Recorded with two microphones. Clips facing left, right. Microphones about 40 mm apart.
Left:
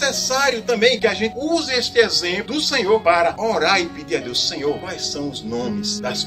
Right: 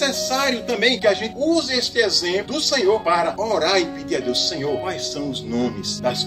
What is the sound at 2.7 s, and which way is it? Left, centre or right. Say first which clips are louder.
Speech: left 1 dB; left.